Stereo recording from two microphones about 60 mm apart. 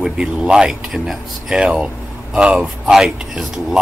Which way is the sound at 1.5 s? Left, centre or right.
Centre.